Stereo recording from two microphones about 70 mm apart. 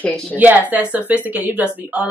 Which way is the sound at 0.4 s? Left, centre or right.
Right.